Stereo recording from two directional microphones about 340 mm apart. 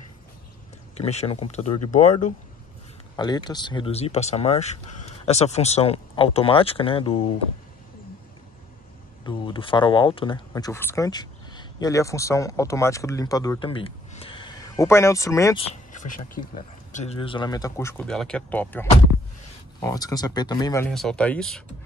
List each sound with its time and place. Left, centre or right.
0.9 s speech: centre
9.2 s speech: centre
15.7 s speech: left; by 21.6 s centre